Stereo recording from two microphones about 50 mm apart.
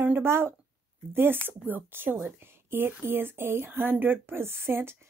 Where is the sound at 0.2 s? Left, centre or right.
Right.